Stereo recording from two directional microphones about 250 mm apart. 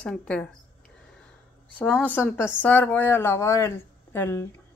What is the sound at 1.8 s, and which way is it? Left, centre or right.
A woman's voice, centre.